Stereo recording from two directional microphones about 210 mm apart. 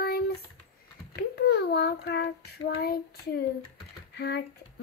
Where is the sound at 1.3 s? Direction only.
50° left (ahead or behind).